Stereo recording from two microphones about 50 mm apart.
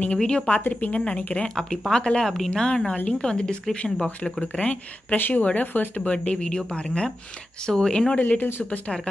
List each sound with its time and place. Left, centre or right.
0.2 s speech: centre
0.7 s speech: left
1.5 s speech: centre; by 4.3 s left
5.1 s speech: left
6.0 s speech: left
8.2 s speech: left